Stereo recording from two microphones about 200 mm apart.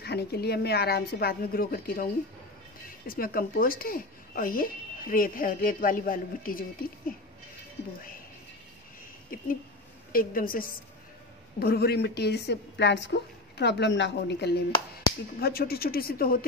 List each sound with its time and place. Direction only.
0.0 s speech: 55° left (ahead or behind)
3.1 s speech: 45° left (ahead or behind)
9.3 s a woman's voice: 45° left (ahead or behind)